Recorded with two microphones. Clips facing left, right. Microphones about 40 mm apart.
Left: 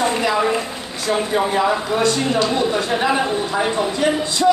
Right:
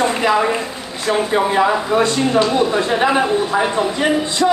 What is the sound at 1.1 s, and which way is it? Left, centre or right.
Speech, right.